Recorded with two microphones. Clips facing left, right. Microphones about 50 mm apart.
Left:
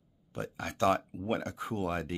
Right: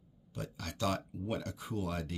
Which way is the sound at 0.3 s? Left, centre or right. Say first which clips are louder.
Left 5 dB; left.